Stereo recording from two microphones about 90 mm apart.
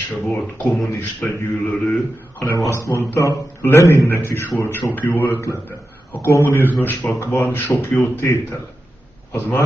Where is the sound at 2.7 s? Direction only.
35° left (ahead or behind).